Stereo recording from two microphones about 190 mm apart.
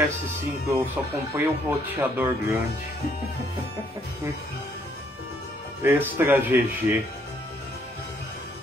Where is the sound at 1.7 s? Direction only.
10° right (ahead or behind).